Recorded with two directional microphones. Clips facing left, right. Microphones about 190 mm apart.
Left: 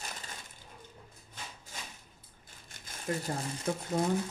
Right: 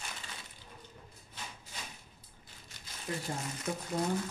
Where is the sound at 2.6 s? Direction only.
50° left (ahead or behind).